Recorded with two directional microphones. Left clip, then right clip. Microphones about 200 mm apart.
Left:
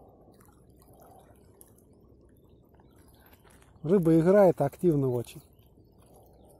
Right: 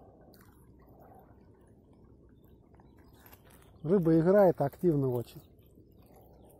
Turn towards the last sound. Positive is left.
turn(degrees=20)  # may be behind; listen again after turning